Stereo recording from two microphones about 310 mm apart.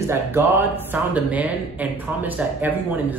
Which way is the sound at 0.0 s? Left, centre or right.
Centre.